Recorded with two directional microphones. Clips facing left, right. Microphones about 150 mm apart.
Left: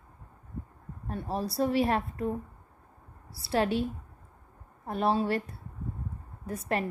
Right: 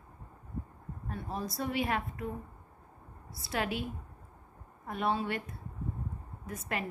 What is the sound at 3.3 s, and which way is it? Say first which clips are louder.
A woman's voice: left 7 dB; 30° left (ahead or behind).